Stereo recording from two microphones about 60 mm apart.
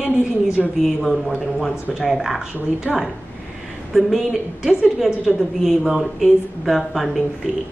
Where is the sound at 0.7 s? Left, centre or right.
Centre.